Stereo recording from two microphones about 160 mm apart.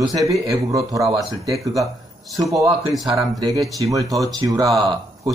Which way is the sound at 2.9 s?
Centre (ahead or behind).